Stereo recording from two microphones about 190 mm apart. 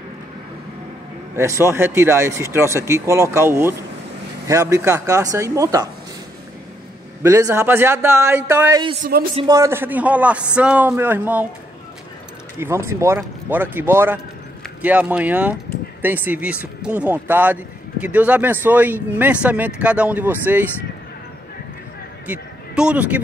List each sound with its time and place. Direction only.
1.3 s speech: 15° right (ahead or behind)
7.2 s speech: 15° right (ahead or behind)
9.0 s speech: 50° right (ahead or behind)
9.5 s speech: 15° right (ahead or behind)
12.5 s speech: 15° right (ahead or behind)
22.3 s speech: 5° right (ahead or behind)